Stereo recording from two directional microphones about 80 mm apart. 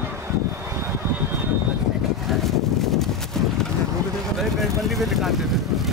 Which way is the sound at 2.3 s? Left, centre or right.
Centre.